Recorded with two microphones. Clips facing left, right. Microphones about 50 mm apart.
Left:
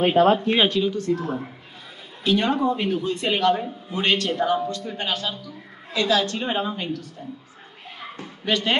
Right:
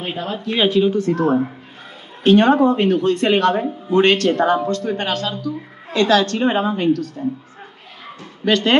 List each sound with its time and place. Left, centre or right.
0.0 s speech: left
0.7 s speech: right
1.1 s a man's voice: right
8.5 s speech: right